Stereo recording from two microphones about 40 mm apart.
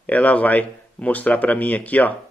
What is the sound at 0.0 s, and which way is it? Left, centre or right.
Speech, left.